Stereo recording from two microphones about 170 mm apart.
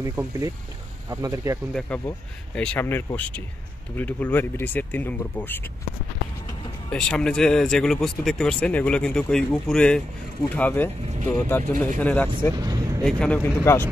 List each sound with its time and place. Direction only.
0.0 s speech: 15° right (ahead or behind)
1.7 s speech: 5° left (ahead or behind)
6.9 s speech: 5° left (ahead or behind)
12.5 s vehicle: 20° right (ahead or behind)
13.0 s speech: 5° left (ahead or behind)